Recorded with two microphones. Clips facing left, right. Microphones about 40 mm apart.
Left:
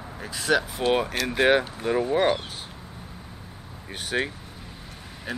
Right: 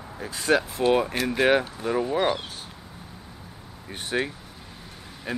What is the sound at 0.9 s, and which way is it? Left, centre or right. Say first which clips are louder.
Speech: even; centre.